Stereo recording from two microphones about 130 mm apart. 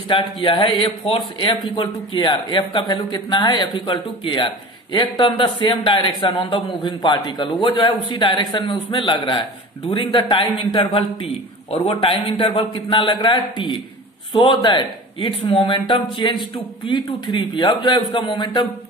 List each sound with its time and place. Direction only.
0.1 s a man's voice: 40° left (ahead or behind)
1.8 s a man's voice: 35° left (ahead or behind)